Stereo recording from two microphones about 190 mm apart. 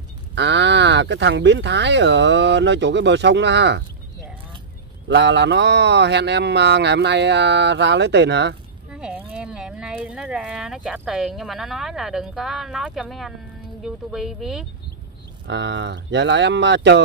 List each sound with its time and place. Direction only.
0.3 s speech: 65° right (ahead or behind)
5.0 s speech: 65° right (ahead or behind)
8.9 s speech: 5° right (ahead or behind)
15.4 s speech: 70° right (ahead or behind)